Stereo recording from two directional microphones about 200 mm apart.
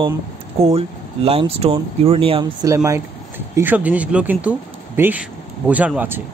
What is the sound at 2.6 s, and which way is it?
Speech, 15° right (ahead or behind).